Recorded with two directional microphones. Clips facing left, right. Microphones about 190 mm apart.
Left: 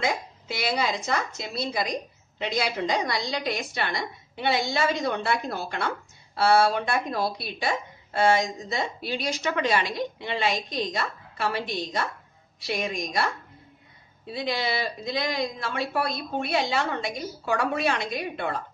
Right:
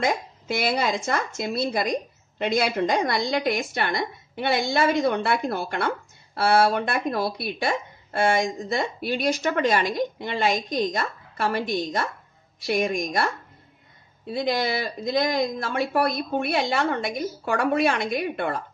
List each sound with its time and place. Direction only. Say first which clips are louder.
0.0 s a woman's voice: right 3 dB; 50° right (ahead or behind)